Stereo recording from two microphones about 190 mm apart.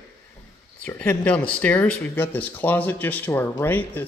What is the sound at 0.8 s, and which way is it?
Speech, 10° left (ahead or behind).